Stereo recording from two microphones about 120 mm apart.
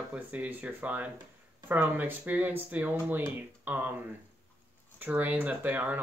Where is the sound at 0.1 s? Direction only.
10° right (ahead or behind).